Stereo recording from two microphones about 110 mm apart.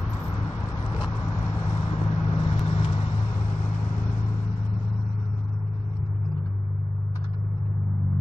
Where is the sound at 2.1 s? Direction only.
60° left (ahead or behind).